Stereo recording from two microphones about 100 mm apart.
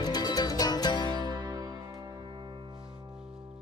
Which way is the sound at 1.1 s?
45° right (ahead or behind).